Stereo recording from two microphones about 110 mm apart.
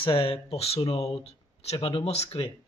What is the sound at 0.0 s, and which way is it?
Speech, 55° left (ahead or behind).